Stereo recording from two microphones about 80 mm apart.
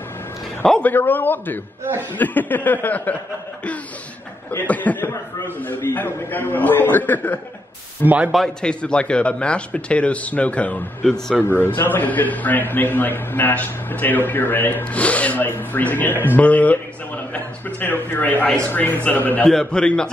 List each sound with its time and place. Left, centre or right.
0.8 s a man's voice: left
4.5 s a man's voice: left
8.0 s speech: centre
8.6 s a man's voice: centre
19.4 s speech: centre